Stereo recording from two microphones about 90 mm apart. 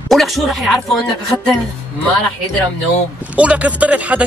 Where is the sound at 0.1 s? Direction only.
Centre (ahead or behind).